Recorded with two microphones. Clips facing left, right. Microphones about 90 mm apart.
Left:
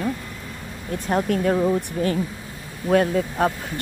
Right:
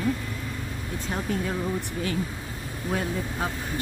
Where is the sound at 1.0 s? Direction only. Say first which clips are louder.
Left 9 dB; 60° left (ahead or behind).